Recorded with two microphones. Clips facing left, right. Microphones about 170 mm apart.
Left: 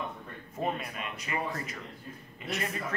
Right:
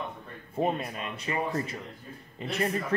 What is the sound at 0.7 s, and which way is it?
Speech, 30° right (ahead or behind).